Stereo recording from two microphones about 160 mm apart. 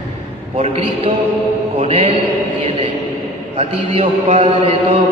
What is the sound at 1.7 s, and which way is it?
Mantra, 40° right (ahead or behind).